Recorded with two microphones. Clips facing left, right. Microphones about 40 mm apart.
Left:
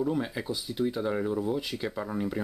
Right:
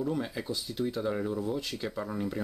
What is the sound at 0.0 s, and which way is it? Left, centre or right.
Speech, centre.